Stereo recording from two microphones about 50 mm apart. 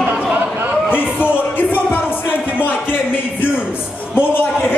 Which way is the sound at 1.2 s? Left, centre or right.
Left.